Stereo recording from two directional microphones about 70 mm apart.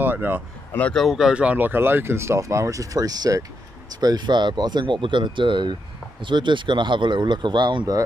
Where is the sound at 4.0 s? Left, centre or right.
Right.